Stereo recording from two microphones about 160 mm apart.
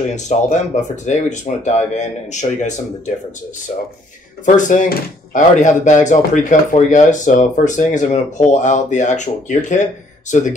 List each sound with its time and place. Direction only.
0.1 s speech: 50° left (ahead or behind)
4.6 s speech: 50° left (ahead or behind)